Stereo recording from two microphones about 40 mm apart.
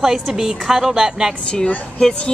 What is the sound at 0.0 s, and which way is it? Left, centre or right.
A woman's voice, centre.